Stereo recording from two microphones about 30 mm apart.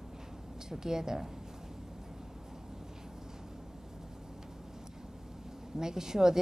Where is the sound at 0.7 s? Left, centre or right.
Centre.